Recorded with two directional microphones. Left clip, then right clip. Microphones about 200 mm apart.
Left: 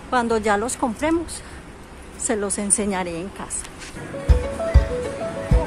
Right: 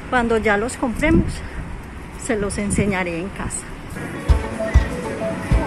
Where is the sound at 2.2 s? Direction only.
20° left (ahead or behind).